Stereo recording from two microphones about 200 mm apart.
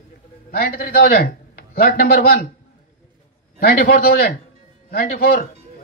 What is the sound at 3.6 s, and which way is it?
Speech, 50° left (ahead or behind).